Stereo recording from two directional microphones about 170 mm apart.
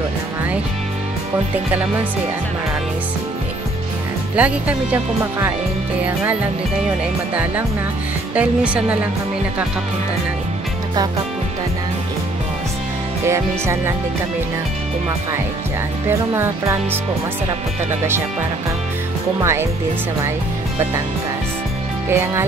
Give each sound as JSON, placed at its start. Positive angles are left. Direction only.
{"t": 4.4, "sound": "speech", "side_deg": -10}
{"t": 8.4, "sound": "speech", "side_deg": -5}
{"t": 13.2, "sound": "speech", "side_deg": -15}
{"t": 16.1, "sound": "speech", "side_deg": -15}
{"t": 19.4, "sound": "speech", "side_deg": -15}
{"t": 22.1, "sound": "speech", "side_deg": -15}